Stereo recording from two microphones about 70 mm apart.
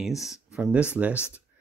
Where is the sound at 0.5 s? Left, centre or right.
Centre.